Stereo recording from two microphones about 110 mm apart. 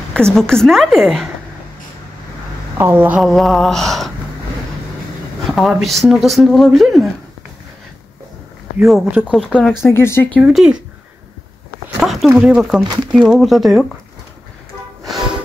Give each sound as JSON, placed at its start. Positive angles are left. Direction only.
{"t": 0.1, "sound": "speech", "side_deg": 5}
{"t": 2.8, "sound": "a woman's voice", "side_deg": -20}
{"t": 3.2, "sound": "speech", "side_deg": 0}
{"t": 5.5, "sound": "speech", "side_deg": 0}
{"t": 8.8, "sound": "speech", "side_deg": 0}
{"t": 9.9, "sound": "speech", "side_deg": 25}
{"t": 10.4, "sound": "speech", "side_deg": -5}
{"t": 12.0, "sound": "speech", "side_deg": 0}
{"t": 12.8, "sound": "speech", "side_deg": -40}
{"t": 13.1, "sound": "speech", "side_deg": 0}